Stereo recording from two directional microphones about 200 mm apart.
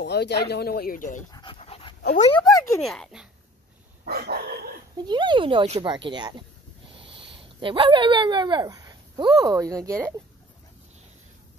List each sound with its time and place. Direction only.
0.0 s speech: 55° left (ahead or behind); by 1.2 s 40° left (ahead or behind)
1.3 s dog: 25° left (ahead or behind)
2.5 s speech: 15° left (ahead or behind)
2.8 s speech: centre (ahead or behind)
4.0 s dog: 50° right (ahead or behind)
4.9 s speech: 20° right (ahead or behind)
6.9 s a sound: 25° right (ahead or behind)
7.6 s speech: 25° right (ahead or behind)